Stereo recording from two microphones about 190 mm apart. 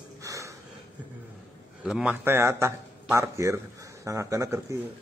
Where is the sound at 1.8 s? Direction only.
5° right (ahead or behind).